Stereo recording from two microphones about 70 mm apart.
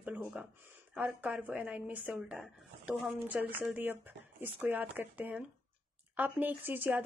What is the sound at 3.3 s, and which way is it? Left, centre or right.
Speech, right.